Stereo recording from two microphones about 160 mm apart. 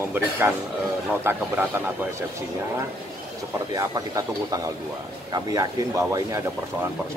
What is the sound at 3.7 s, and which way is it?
Speech, 20° right (ahead or behind).